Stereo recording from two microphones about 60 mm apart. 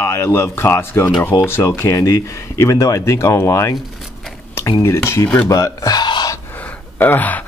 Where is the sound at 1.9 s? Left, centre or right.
Left.